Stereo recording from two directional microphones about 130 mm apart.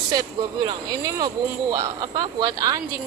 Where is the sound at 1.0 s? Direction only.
30° right (ahead or behind).